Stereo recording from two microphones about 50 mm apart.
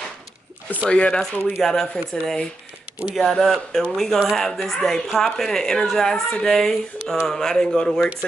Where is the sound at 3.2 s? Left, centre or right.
Centre.